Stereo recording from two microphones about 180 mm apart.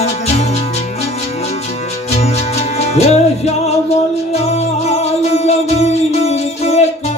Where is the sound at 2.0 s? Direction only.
35° left (ahead or behind).